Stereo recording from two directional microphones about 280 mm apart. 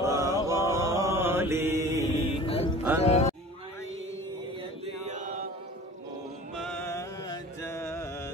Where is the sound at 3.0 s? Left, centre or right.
Left.